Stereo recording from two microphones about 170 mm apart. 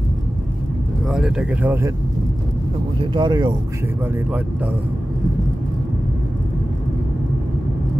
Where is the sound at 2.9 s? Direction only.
25° right (ahead or behind).